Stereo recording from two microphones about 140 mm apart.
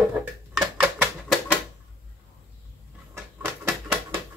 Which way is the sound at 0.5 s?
10° right (ahead or behind).